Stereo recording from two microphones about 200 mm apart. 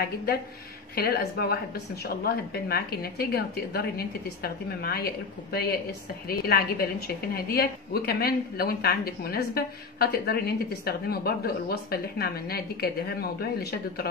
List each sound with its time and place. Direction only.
0.0 s a woman's voice: 50° left (ahead or behind)